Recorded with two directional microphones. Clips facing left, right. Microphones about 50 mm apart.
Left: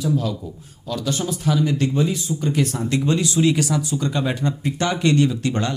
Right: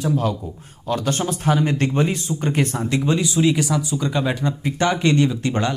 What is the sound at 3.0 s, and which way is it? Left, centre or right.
Speech, centre.